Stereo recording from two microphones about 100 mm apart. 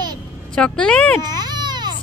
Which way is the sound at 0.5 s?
10° left (ahead or behind).